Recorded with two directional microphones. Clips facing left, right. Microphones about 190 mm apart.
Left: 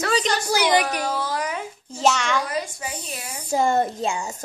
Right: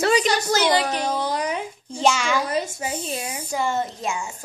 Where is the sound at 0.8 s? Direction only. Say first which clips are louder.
Right 1 dB; 20° right (ahead or behind).